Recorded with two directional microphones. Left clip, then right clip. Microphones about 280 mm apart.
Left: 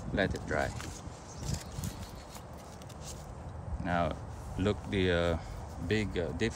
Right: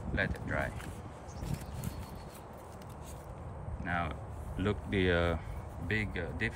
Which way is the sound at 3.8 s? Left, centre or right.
Centre.